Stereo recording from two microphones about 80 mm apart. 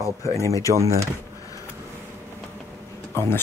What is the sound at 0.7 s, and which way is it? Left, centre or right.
Speech, right.